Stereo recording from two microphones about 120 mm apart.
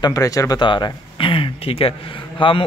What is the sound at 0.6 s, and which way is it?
A man's voice, 40° left (ahead or behind).